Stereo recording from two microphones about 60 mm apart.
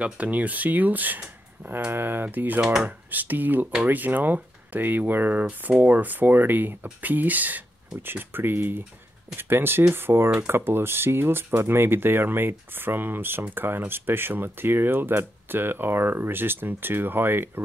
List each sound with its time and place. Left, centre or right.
0.0 s speech: right
2.6 s speech: centre
3.1 s speech: right